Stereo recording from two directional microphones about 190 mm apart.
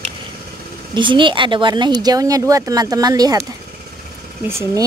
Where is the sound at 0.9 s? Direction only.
25° right (ahead or behind).